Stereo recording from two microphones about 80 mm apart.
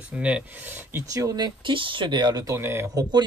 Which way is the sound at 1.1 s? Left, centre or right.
Right.